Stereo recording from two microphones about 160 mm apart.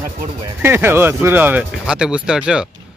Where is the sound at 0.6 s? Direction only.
15° right (ahead or behind).